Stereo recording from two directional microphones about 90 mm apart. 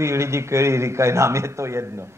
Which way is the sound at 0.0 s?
30° right (ahead or behind).